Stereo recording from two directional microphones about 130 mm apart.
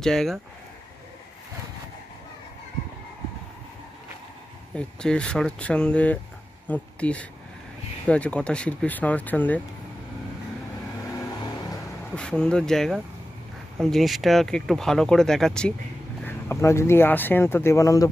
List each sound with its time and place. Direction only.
0.0 s speech: 5° left (ahead or behind)
4.7 s speech: 5° left (ahead or behind)
12.2 s speech: 5° left (ahead or behind)
16.3 s speech: 20° left (ahead or behind)